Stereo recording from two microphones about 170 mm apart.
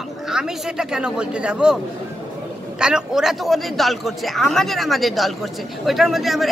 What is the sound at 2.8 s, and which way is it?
Speech, 5° right (ahead or behind).